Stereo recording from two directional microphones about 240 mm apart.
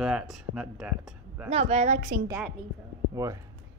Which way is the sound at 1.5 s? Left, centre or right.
Right.